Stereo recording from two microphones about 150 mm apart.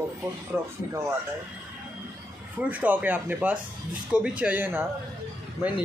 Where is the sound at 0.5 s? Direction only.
20° right (ahead or behind).